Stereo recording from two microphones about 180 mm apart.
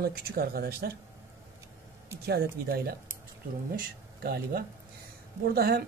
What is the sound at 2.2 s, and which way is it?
Speech, 60° right (ahead or behind).